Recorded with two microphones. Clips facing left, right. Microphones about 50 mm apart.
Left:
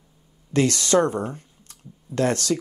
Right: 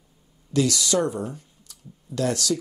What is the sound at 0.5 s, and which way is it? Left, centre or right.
Speech, left.